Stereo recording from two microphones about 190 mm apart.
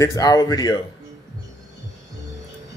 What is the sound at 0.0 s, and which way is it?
Speech, 20° left (ahead or behind).